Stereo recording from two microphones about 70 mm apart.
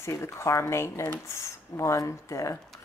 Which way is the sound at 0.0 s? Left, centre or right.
Left.